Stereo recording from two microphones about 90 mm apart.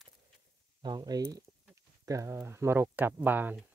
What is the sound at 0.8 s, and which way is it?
Speech, 50° right (ahead or behind).